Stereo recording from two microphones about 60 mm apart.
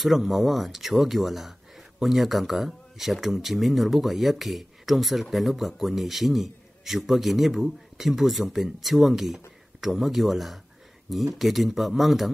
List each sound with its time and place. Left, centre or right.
0.0 s speech: centre